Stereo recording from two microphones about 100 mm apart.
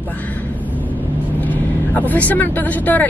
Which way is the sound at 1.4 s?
15° left (ahead or behind).